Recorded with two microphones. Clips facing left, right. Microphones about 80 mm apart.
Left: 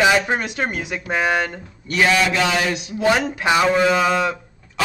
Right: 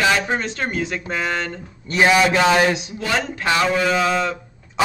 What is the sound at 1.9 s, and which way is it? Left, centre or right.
Speech, right.